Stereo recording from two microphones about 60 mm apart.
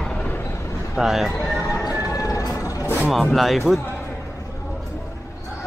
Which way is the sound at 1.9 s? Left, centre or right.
Left.